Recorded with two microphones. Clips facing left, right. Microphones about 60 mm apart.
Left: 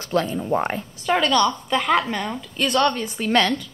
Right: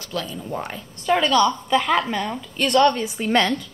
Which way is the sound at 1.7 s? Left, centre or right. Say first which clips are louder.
Even; centre.